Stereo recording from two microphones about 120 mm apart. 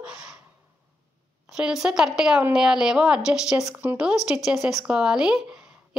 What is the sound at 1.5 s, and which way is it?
A woman's voice, 5° right (ahead or behind).